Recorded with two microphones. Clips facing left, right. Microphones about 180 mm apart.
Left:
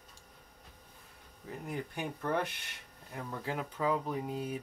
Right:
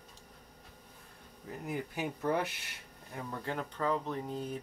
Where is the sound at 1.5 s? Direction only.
5° right (ahead or behind).